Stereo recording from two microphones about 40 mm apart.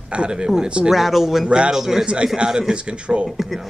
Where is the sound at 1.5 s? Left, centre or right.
Right.